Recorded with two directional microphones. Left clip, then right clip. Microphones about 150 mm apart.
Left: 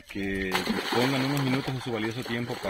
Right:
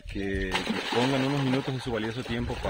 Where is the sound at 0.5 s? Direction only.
40° left (ahead or behind).